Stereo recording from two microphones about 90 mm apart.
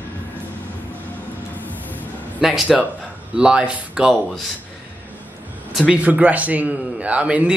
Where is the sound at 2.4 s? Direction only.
10° right (ahead or behind).